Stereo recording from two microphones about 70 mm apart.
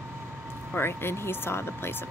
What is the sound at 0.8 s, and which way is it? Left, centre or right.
Speech, left.